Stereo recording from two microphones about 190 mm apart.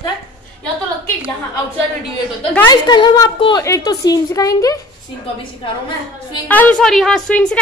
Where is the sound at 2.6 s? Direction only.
25° left (ahead or behind).